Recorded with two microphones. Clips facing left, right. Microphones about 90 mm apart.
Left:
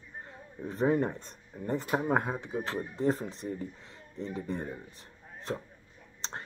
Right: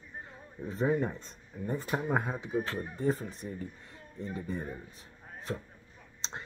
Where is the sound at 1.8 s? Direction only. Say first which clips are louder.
Left 3 dB; 20° left (ahead or behind).